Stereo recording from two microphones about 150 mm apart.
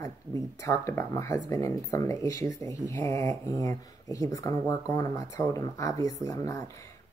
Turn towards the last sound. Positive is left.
turn(degrees=20)  # may be behind; listen again after turning